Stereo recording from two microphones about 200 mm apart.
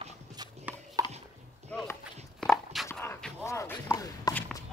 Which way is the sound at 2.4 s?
Centre (ahead or behind).